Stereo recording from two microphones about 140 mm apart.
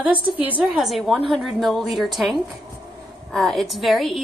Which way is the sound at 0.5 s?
5° right (ahead or behind).